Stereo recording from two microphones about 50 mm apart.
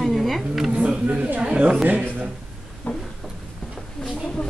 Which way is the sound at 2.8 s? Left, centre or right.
Left.